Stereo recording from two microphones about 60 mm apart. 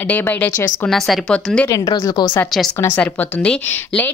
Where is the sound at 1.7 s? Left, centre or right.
Left.